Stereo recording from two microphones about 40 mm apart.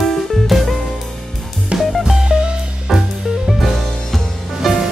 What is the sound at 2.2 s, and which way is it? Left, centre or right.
Music, right.